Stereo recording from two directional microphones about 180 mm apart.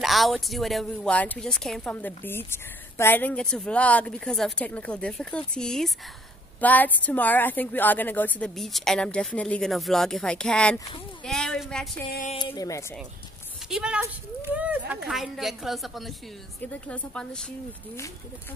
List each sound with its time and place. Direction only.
0.0 s a woman's voice: centre (ahead or behind)
12.4 s speech: 20° left (ahead or behind)
13.7 s speech: 5° right (ahead or behind)